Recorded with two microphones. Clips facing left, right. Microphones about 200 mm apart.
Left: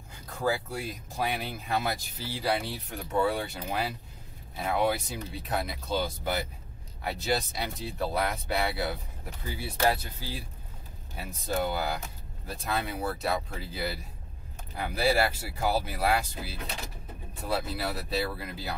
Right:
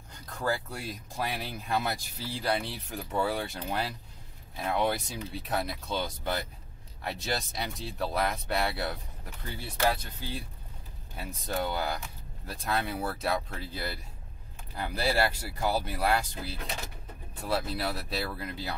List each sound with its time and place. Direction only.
0.7 s speech: centre (ahead or behind)
15.0 s speech: centre (ahead or behind)